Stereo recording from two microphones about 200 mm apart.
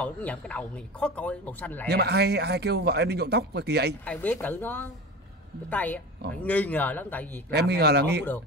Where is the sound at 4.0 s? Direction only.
5° left (ahead or behind).